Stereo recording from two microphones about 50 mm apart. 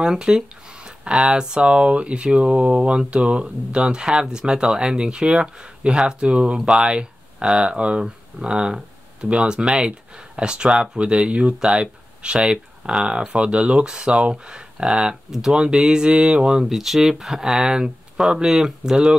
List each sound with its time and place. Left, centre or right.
0.0 s speech: centre
16.6 s speech: centre